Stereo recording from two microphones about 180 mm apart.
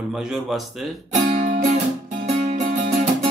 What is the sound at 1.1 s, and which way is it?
Music, 40° right (ahead or behind).